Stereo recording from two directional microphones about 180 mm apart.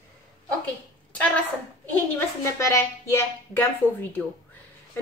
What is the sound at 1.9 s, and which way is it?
A woman's voice, 15° left (ahead or behind).